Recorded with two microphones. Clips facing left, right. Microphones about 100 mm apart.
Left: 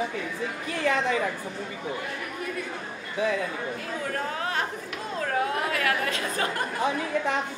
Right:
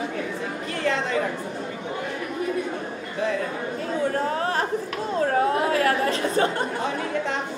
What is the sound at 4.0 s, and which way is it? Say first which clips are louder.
Speech: right 7 dB; 30° right (ahead or behind).